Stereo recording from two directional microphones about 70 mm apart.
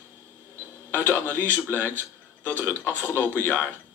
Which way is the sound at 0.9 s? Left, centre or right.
Left.